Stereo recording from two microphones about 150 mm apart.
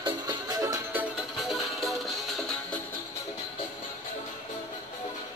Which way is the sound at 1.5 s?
Centre (ahead or behind).